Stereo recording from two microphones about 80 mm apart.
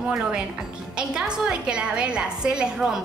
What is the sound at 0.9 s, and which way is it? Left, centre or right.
A woman's voice, centre.